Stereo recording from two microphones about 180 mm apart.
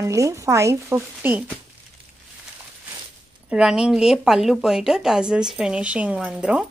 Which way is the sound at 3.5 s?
5° right (ahead or behind).